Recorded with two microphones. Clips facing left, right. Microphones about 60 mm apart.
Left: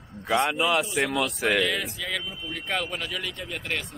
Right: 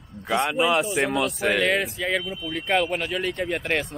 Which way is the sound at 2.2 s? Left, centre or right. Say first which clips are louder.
Right 5 dB; right.